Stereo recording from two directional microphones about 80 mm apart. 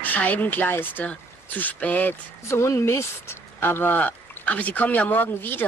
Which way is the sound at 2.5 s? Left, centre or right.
Left.